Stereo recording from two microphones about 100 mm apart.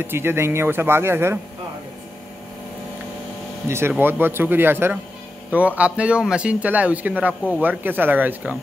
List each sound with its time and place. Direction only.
0.0 s speech: 25° right (ahead or behind)
3.6 s a man's voice: 25° right (ahead or behind)